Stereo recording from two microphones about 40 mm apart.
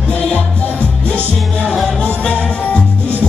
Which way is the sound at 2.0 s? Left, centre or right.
Left.